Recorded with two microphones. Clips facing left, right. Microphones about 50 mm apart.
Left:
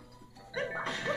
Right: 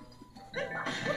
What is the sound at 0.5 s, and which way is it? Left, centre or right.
Music, centre.